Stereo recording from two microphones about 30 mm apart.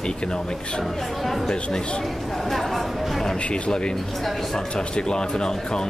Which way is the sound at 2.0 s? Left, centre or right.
Centre.